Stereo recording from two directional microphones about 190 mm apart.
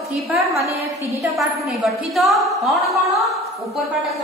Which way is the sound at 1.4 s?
Centre (ahead or behind).